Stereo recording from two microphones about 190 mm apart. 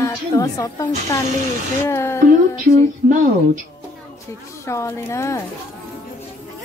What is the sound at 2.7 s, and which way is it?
Speech, 40° right (ahead or behind).